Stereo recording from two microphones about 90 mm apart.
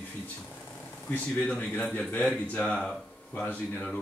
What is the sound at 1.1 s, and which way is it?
Speech, 15° left (ahead or behind).